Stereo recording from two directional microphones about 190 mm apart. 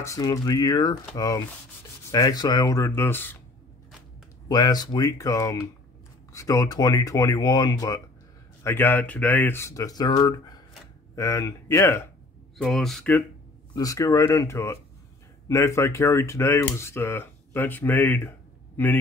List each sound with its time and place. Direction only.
0.0 s speech: 15° left (ahead or behind)
4.5 s speech: 20° left (ahead or behind)
12.5 s speech: centre (ahead or behind)
13.7 s speech: 15° left (ahead or behind)